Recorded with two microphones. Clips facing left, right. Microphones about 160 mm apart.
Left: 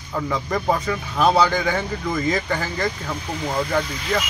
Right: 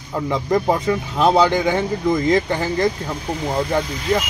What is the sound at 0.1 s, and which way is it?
Speech, 20° right (ahead or behind).